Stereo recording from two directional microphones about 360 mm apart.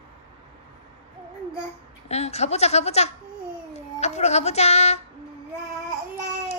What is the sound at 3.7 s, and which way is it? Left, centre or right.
Child singing, centre.